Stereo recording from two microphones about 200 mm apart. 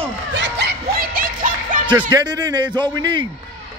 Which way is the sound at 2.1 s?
20° right (ahead or behind).